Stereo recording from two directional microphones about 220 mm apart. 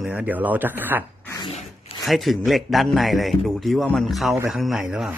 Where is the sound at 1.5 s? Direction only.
30° left (ahead or behind).